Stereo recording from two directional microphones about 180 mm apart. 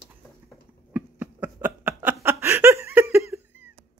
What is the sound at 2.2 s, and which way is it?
Laughter, 15° right (ahead or behind).